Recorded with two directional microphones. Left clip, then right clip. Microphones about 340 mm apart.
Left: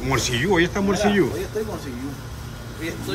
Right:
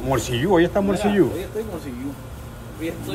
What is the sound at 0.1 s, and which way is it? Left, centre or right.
A woman's voice, centre.